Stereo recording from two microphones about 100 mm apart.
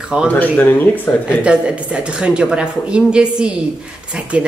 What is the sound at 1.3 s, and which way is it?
Speech, 10° right (ahead or behind).